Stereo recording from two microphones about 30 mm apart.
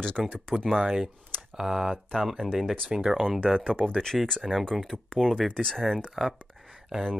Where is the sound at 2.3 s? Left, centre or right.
Centre.